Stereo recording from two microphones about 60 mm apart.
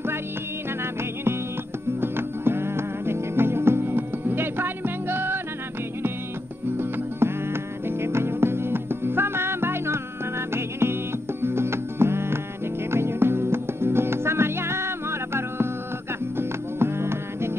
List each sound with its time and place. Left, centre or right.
2.0 s music: right
6.8 s music: right